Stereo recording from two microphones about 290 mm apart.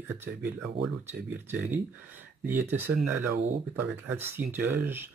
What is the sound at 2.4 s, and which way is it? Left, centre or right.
Speech, centre.